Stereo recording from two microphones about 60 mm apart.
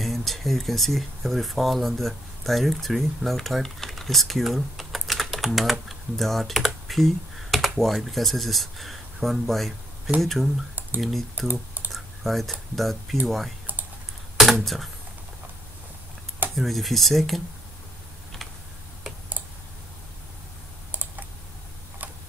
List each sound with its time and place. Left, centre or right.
0.0 s speech: centre
14.3 s a sound: centre
16.5 s speech: centre
20.9 s typing: right